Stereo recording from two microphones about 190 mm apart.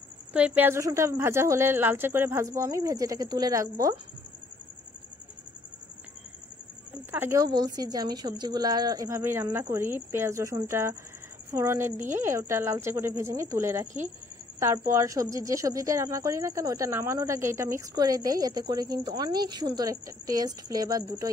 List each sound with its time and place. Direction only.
0.3 s a woman's voice: 5° right (ahead or behind)
7.1 s a woman's voice: 10° right (ahead or behind)
14.9 s a woman's voice: 15° right (ahead or behind)